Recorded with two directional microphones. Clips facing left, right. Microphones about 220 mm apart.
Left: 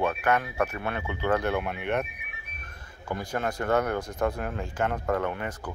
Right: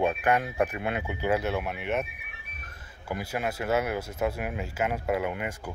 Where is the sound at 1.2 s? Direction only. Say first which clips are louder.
Left 1 dB; 5° right (ahead or behind).